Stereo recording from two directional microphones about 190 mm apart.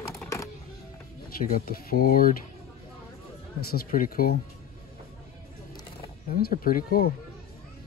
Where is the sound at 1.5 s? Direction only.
50° left (ahead or behind).